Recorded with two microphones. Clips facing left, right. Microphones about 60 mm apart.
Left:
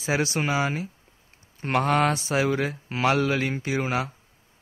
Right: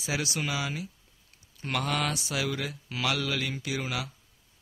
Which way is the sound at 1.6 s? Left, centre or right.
Left.